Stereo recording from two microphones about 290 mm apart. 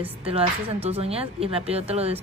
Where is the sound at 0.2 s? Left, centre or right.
Centre.